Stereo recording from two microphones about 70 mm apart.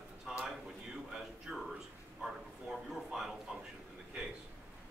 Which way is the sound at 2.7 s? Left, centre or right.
Centre.